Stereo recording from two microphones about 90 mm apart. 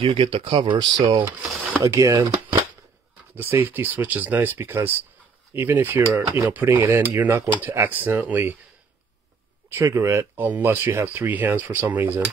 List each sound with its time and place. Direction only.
0.0 s speech: 90° right; by 1.1 s 50° right (ahead or behind)
1.8 s speech: 35° right (ahead or behind)
3.3 s speech: 25° right (ahead or behind)
9.9 s speech: 25° right (ahead or behind)